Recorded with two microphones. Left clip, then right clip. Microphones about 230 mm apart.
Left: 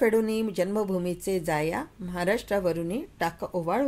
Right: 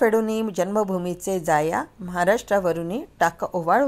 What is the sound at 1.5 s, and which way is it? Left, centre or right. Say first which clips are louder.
Speech: right 11 dB; centre.